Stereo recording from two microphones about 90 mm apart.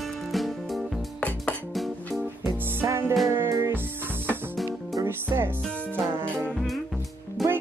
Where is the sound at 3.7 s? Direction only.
20° right (ahead or behind).